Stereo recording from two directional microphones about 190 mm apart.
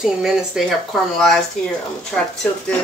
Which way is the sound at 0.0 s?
Centre (ahead or behind).